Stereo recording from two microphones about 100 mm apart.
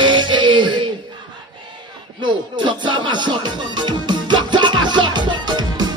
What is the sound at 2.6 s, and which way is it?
Music, 50° right (ahead or behind).